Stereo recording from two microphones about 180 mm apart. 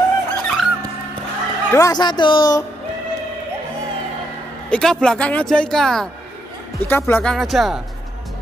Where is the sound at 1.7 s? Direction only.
20° left (ahead or behind).